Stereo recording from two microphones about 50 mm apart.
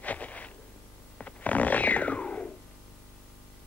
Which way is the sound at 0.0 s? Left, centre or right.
Left.